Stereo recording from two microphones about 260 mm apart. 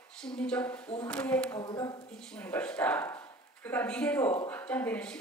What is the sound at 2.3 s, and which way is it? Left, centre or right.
Speech, centre.